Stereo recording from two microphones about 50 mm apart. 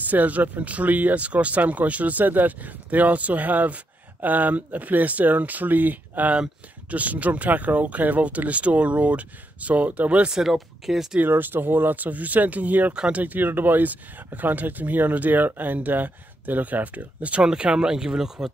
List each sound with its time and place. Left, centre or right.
0.0 s speech: right
10.3 s speech: centre
11.2 s speech: right
12.9 s speech: centre
13.2 s speech: right; by 18.5 s centre